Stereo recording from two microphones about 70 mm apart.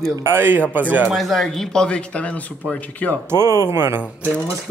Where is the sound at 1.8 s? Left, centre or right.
Centre.